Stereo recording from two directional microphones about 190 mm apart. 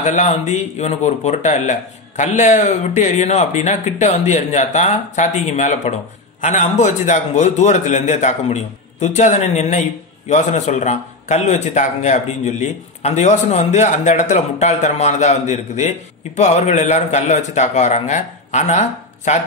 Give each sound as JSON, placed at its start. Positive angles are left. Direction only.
{"t": 0.0, "sound": "a man's voice", "side_deg": 35}